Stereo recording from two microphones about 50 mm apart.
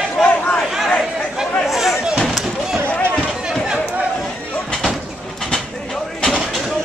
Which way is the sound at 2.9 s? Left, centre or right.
Left.